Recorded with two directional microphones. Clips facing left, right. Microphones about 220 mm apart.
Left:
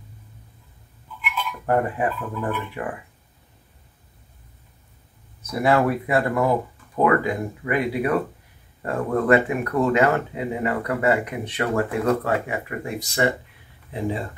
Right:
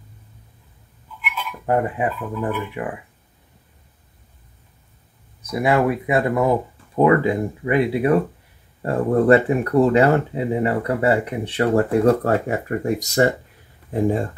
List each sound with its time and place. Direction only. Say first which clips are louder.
1.7 s speech: right 1 dB; 15° right (ahead or behind)
5.4 s speech: right 1 dB; 15° right (ahead or behind)
7.0 s speech: right 4 dB; 25° right (ahead or behind); by 14.2 s 45° right (ahead or behind)